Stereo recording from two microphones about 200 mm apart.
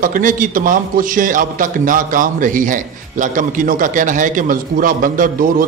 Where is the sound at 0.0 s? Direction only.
45° right (ahead or behind).